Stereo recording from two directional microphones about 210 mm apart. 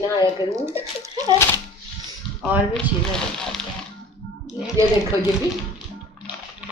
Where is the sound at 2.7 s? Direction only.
5° left (ahead or behind).